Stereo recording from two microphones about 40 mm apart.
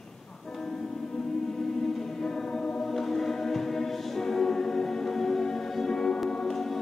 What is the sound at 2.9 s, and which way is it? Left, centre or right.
Choir, centre.